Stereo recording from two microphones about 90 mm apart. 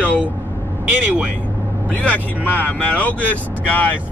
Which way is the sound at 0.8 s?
15° right (ahead or behind).